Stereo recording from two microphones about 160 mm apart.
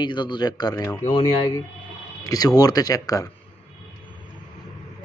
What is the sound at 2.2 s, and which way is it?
Speech, 25° left (ahead or behind).